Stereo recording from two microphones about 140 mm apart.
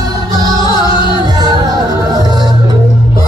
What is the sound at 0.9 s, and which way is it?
Music, 35° left (ahead or behind).